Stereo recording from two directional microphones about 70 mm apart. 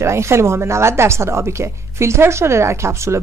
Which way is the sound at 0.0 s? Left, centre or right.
Right.